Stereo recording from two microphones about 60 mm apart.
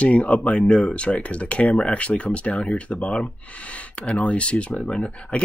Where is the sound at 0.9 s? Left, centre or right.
Left.